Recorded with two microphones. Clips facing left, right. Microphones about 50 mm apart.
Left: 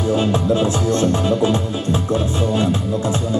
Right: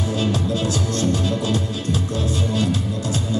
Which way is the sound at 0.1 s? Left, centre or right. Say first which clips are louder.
Left 6 dB; left.